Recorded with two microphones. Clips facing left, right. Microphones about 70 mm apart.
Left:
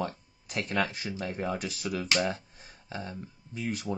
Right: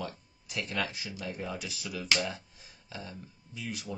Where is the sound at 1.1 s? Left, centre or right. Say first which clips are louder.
Left 5 dB; left.